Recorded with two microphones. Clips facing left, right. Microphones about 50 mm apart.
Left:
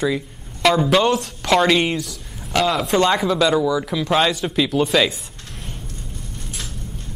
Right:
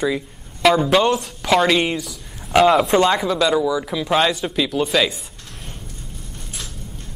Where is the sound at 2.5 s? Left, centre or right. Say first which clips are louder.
Right 6 dB; centre.